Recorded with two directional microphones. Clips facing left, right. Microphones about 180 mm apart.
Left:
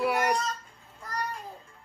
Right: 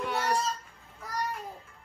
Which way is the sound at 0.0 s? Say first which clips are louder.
Left 4 dB; 10° left (ahead or behind).